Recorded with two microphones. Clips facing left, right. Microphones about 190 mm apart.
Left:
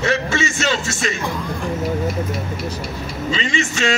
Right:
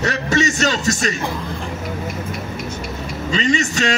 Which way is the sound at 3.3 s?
40° right (ahead or behind).